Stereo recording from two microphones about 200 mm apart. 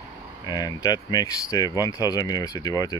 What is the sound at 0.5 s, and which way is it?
Speech, 20° left (ahead or behind).